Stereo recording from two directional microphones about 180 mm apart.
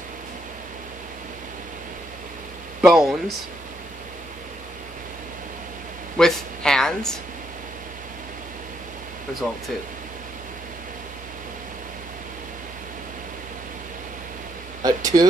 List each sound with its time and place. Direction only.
2.8 s speech: centre (ahead or behind)
6.1 s speech: 5° left (ahead or behind)
9.4 s speech: 5° left (ahead or behind)
14.8 s a sound: 20° right (ahead or behind)